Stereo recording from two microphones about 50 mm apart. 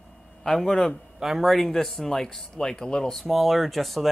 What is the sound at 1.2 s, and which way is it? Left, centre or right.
Speech, centre.